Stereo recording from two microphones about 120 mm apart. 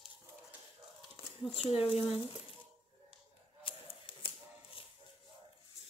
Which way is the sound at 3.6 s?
45° left (ahead or behind).